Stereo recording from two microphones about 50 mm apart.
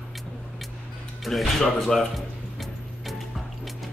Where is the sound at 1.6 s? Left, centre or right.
Centre.